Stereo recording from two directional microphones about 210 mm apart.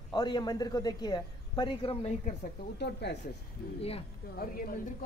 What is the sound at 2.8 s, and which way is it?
A woman's voice, 55° left (ahead or behind).